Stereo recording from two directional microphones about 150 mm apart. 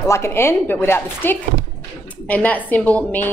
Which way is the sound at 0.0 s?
20° left (ahead or behind).